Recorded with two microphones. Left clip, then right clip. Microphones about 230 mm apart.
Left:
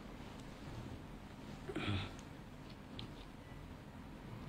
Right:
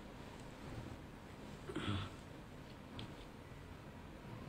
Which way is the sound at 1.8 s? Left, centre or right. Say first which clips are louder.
Left 2 dB; centre.